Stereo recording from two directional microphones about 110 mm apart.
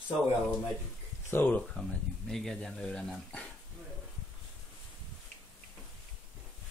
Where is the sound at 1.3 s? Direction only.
15° left (ahead or behind).